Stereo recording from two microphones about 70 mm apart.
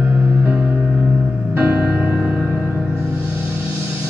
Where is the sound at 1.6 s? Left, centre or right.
Right.